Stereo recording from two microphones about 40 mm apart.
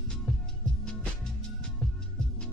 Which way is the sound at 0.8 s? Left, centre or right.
Centre.